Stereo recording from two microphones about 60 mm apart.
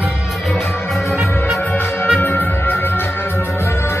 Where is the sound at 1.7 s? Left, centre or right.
Left.